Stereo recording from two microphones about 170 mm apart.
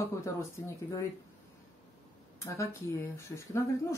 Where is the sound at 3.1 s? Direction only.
15° left (ahead or behind).